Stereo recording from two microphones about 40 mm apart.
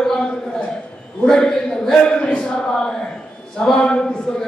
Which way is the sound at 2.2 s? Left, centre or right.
Left.